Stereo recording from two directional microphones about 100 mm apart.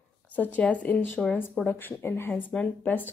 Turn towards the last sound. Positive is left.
turn(degrees=15)  # may be behind; listen again after turning